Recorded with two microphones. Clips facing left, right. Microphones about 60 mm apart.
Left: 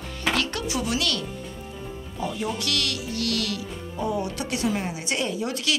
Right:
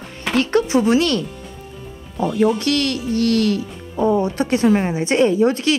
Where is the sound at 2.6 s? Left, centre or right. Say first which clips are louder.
Right 9 dB; right.